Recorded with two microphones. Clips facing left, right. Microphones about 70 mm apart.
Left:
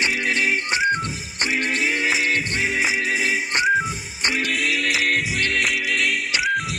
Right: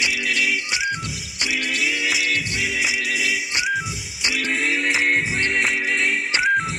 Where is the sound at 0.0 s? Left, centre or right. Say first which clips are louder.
Left 1 dB; left.